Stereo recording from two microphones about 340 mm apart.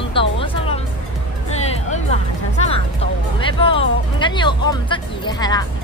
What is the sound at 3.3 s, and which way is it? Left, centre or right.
Speech, centre.